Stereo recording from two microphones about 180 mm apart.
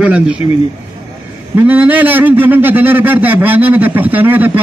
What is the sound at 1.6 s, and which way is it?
A man's voice, 10° right (ahead or behind).